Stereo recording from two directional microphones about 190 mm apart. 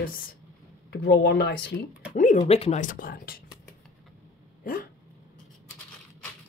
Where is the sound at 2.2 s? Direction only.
40° left (ahead or behind).